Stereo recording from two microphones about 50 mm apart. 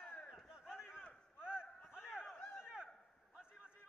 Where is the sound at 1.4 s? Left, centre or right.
Centre.